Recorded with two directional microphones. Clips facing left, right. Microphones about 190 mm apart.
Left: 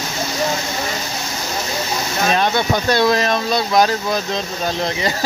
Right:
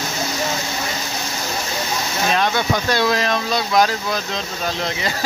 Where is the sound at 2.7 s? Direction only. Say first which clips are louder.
Left 5 dB; 30° left (ahead or behind).